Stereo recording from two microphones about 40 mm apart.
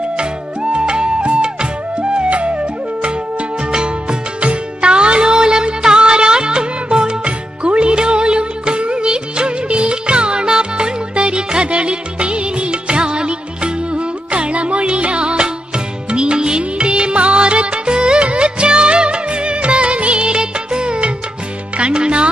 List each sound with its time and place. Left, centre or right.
0.2 s music: right